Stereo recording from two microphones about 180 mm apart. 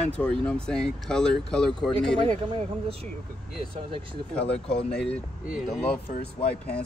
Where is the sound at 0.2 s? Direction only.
5° left (ahead or behind).